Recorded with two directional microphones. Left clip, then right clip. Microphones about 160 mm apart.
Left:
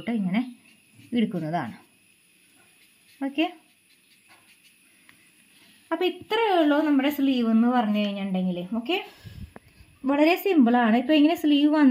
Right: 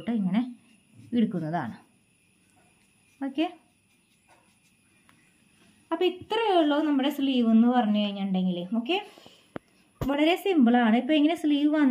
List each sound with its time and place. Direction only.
0.0 s a sound: 20° left (ahead or behind)
1.1 s speech: 15° left (ahead or behind)
3.2 s speech: 20° left (ahead or behind)
5.9 s a woman's voice: 30° left (ahead or behind)
7.4 s speech: 25° left (ahead or behind)
8.1 s a woman's voice: 40° left (ahead or behind)
9.1 s a sound: centre (ahead or behind)
10.0 s a woman's voice: 35° left (ahead or behind)